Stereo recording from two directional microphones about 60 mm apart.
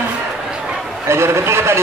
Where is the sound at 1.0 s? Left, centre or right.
Right.